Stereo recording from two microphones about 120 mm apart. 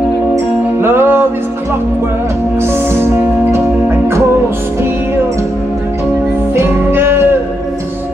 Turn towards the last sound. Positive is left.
turn(degrees=-20)  # may be behind; listen again after turning